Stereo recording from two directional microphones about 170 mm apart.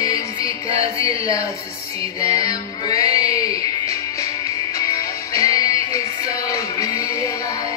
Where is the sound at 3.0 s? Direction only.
35° right (ahead or behind).